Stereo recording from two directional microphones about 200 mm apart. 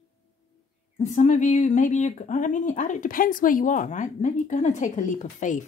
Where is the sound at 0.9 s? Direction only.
40° left (ahead or behind).